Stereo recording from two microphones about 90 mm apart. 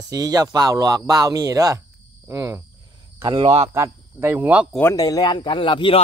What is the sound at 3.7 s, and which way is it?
Speech, 30° right (ahead or behind).